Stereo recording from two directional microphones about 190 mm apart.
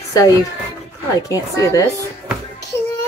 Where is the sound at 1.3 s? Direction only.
20° left (ahead or behind).